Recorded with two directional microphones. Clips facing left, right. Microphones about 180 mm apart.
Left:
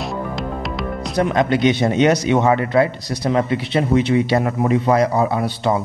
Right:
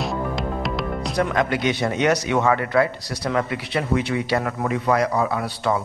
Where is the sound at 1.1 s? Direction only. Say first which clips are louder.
Left 5 dB; 25° left (ahead or behind).